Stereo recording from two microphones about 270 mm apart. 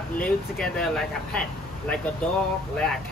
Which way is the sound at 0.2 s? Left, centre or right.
Centre.